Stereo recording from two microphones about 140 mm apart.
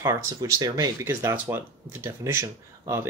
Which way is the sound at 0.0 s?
20° right (ahead or behind).